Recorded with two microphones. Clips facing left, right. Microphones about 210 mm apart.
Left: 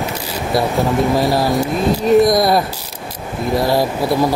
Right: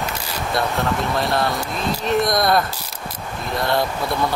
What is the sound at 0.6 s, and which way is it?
Speech, 5° left (ahead or behind).